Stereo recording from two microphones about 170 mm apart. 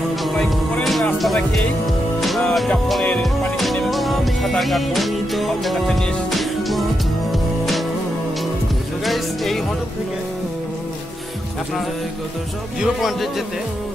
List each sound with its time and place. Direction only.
0.2 s music: centre (ahead or behind)
2.1 s music: centre (ahead or behind)
9.0 s music: centre (ahead or behind)
12.8 s a man's voice: centre (ahead or behind)